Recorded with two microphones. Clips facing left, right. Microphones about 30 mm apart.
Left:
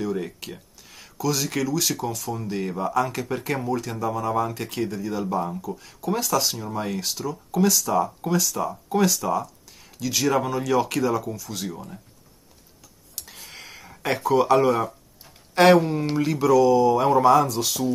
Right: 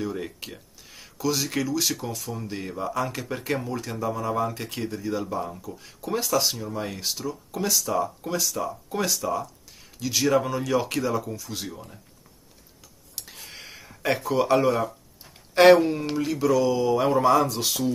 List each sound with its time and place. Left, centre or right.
0.0 s a sound: centre
1.2 s speech: centre
8.3 s speech: centre
13.6 s a sound: centre
15.7 s speech: centre
16.0 s speech: centre
16.3 s speech: centre
17.4 s speech: right
17.6 s speech: centre